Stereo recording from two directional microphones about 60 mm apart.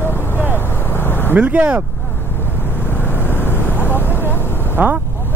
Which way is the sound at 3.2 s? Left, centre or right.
Left.